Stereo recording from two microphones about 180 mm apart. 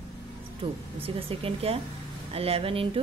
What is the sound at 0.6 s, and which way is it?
Speech, 30° right (ahead or behind).